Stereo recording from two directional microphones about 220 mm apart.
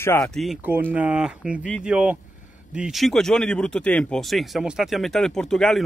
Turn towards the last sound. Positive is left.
turn(degrees=5)  # may be behind; listen again after turning